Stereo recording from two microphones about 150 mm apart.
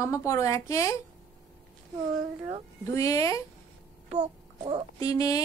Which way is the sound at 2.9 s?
20° left (ahead or behind).